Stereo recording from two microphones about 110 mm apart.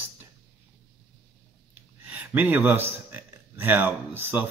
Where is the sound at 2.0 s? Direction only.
15° right (ahead or behind).